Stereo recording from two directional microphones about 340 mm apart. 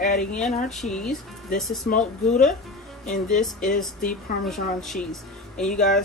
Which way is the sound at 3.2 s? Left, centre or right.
Centre.